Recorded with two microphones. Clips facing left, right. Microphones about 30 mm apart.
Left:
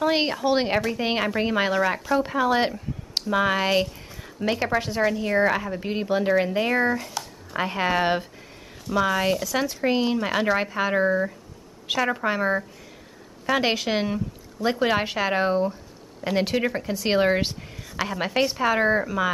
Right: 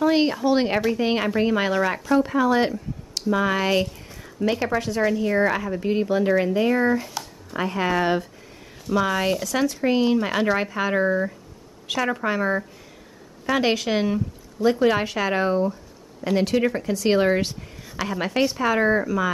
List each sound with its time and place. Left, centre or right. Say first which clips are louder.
0.0 s a woman's voice: right 3 dB; centre
6.9 s speech: right 3 dB; centre
7.5 s speech: even; centre
8.8 s a woman's voice: even; centre